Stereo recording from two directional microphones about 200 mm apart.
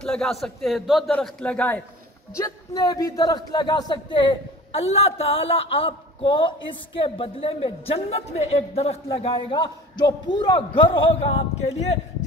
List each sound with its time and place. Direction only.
0.0 s a man's voice: 5° left (ahead or behind)
2.3 s a man's voice: 15° left (ahead or behind)